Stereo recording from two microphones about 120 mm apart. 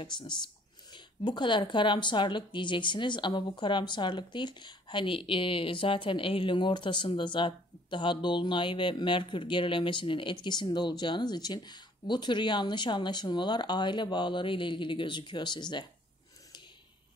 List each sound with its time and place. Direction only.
0.0 s speech: 40° left (ahead or behind)